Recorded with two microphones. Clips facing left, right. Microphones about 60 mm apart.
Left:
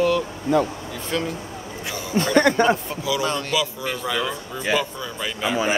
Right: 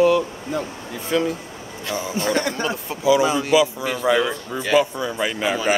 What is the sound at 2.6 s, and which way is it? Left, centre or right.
Speech, left.